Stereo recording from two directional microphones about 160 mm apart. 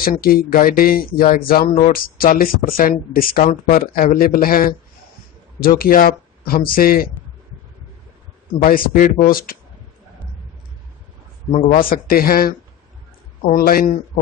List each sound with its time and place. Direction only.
0.0 s speech: 65° left (ahead or behind)
8.6 s speech: 60° left (ahead or behind)
11.5 s speech: 60° left (ahead or behind)